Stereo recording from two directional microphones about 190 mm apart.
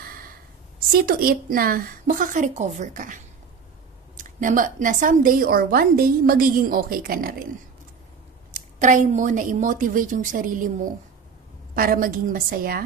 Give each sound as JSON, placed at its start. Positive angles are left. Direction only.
{"t": 0.0, "sound": "a sound", "side_deg": -50}
{"t": 0.7, "sound": "a woman's voice", "side_deg": -50}
{"t": 4.2, "sound": "a woman's voice", "side_deg": -45}
{"t": 8.5, "sound": "a woman's voice", "side_deg": -40}